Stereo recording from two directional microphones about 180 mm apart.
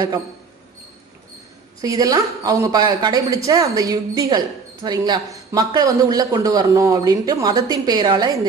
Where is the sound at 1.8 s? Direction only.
20° right (ahead or behind).